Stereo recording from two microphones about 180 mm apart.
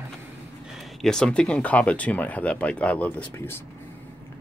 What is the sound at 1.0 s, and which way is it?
Speech, 5° left (ahead or behind).